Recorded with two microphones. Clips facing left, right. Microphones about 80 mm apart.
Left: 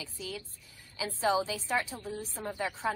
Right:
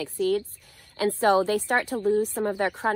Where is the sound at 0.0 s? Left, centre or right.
Right.